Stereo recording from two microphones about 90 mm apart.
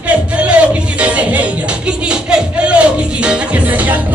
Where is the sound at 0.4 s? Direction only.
15° right (ahead or behind).